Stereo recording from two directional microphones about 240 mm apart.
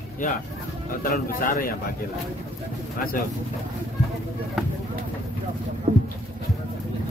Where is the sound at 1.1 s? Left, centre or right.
Left.